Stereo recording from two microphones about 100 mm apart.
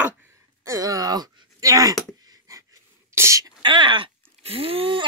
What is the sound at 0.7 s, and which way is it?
Speech, 35° right (ahead or behind).